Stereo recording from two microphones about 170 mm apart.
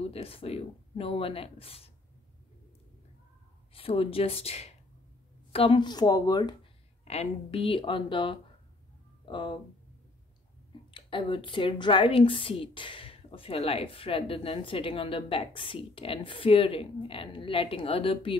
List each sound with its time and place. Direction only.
0.1 s speech: 35° left (ahead or behind)
3.7 s a woman's voice: 35° left (ahead or behind)
7.1 s a woman's voice: 35° left (ahead or behind)
10.9 s speech: 30° left (ahead or behind)